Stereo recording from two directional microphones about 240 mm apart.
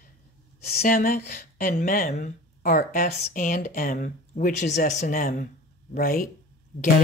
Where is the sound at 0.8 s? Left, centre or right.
Left.